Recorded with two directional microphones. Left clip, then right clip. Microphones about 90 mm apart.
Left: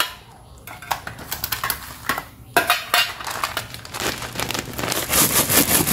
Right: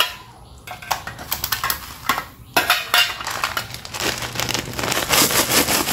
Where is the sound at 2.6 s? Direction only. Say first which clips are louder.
Right 1 dB; 40° left (ahead or behind).